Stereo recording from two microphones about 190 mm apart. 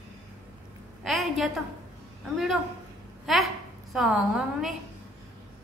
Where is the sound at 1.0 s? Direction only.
Centre (ahead or behind).